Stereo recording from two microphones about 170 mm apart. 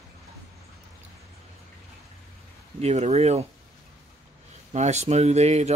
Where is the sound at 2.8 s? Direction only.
40° right (ahead or behind).